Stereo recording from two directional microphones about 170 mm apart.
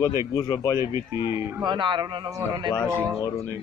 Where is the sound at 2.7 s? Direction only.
15° left (ahead or behind).